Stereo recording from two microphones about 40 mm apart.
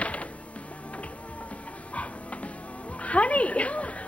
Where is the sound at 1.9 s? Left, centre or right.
Left.